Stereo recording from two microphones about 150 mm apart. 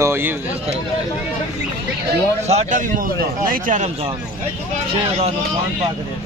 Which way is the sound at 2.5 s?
50° right (ahead or behind).